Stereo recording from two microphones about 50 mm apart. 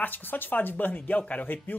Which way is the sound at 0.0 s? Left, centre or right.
Left.